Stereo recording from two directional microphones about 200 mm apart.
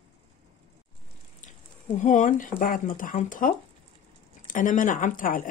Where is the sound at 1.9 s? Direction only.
40° left (ahead or behind).